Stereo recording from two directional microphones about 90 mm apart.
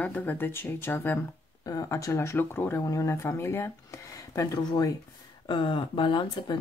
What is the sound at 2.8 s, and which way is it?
Speech, 40° left (ahead or behind).